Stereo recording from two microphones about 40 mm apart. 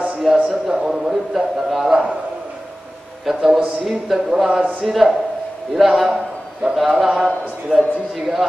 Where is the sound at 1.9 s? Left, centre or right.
Centre.